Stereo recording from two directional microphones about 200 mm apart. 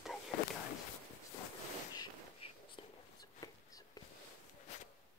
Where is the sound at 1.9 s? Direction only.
25° left (ahead or behind).